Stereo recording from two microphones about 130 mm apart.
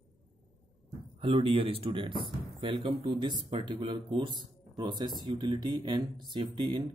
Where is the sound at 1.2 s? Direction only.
40° right (ahead or behind).